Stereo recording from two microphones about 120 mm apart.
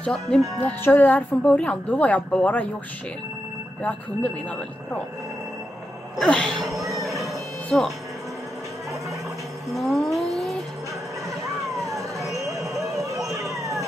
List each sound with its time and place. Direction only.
0.0 s speech: 5° left (ahead or behind)
0.6 s a woman's voice: 15° left (ahead or behind)
3.8 s a woman's voice: 10° left (ahead or behind)
6.1 s a woman's voice: 10° left (ahead or behind)
6.7 s speech: 25° right (ahead or behind)
7.0 s a sound: centre (ahead or behind)
9.8 s speech: centre (ahead or behind)
10.1 s a sound: centre (ahead or behind)
12.9 s run: 25° right (ahead or behind)
13.4 s vehicle: centre (ahead or behind)